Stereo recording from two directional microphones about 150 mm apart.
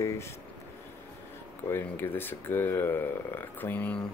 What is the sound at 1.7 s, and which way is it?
Speech, 15° left (ahead or behind).